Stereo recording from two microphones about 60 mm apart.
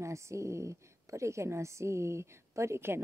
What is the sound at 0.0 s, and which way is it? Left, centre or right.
A woman's voice, right.